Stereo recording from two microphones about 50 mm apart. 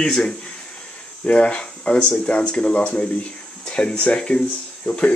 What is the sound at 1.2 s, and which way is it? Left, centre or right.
Speech, left.